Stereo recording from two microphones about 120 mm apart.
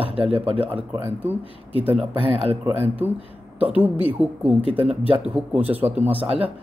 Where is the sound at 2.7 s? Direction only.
50° left (ahead or behind).